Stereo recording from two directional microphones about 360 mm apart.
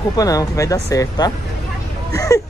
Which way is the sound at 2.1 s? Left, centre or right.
Centre.